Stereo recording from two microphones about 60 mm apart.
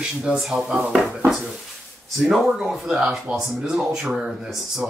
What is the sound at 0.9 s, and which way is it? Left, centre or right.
Speech, centre.